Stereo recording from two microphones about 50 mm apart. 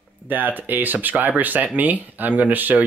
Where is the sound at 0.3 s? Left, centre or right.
Right.